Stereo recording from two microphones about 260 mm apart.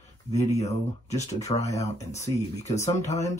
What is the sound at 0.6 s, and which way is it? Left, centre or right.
Speech, left.